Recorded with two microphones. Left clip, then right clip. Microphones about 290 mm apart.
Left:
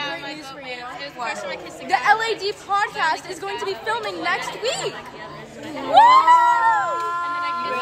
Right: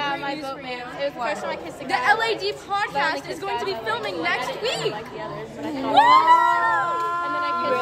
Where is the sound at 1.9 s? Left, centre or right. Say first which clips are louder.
Left 2 dB; centre.